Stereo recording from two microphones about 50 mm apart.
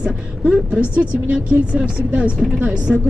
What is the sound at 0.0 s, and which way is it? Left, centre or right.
Speech, right.